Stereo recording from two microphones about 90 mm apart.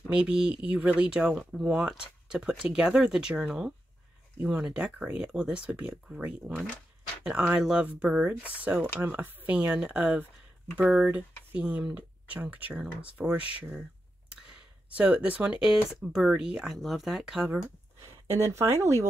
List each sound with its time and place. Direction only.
0.1 s speech: 10° right (ahead or behind)
15.0 s speech: 15° right (ahead or behind)
16.7 s speech: centre (ahead or behind)
18.2 s speech: 30° right (ahead or behind)